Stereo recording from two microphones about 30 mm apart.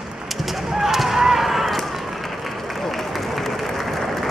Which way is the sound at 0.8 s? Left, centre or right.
Centre.